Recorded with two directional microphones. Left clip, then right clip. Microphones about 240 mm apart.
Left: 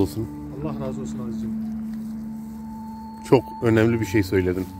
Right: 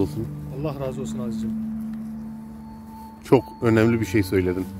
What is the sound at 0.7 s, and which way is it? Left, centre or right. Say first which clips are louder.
Speech: right 2 dB; right.